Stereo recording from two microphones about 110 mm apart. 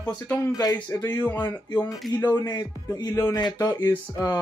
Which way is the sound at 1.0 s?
20° left (ahead or behind).